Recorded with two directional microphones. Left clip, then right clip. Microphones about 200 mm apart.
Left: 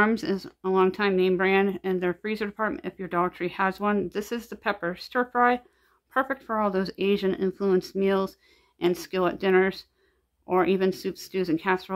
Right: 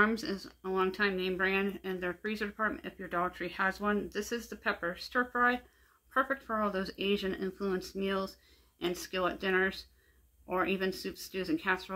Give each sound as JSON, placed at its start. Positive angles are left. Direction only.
{"t": 0.0, "sound": "speech", "side_deg": 50}